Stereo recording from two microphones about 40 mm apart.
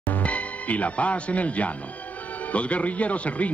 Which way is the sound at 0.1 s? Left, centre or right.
Left.